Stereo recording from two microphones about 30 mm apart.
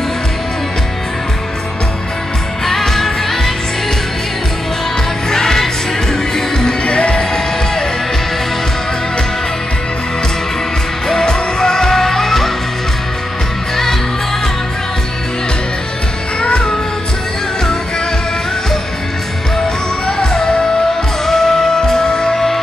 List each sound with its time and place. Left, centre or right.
2.6 s music: centre
5.3 s music: centre
6.8 s music: left
11.1 s music: left
20.1 s music: left